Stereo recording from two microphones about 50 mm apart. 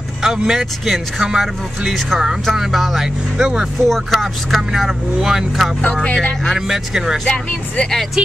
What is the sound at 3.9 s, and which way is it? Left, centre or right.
Speech, centre.